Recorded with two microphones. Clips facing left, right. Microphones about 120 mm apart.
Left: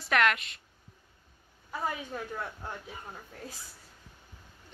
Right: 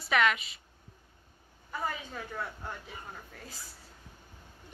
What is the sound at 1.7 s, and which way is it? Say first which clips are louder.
Speech: left 2 dB; 15° left (ahead or behind).